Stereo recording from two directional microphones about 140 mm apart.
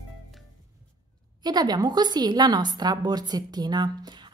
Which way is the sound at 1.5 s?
30° right (ahead or behind).